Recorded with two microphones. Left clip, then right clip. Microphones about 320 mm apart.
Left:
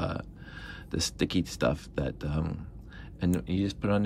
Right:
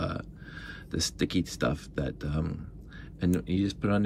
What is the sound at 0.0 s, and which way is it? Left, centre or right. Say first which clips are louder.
Speech: even; centre.